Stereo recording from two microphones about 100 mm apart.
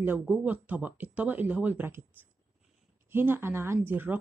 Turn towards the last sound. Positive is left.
turn(degrees=-20)  # may be behind; listen again after turning